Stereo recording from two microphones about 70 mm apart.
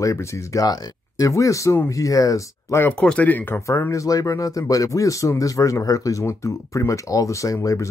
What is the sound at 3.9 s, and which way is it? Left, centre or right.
Speech, left.